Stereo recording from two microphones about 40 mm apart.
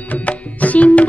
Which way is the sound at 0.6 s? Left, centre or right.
Left.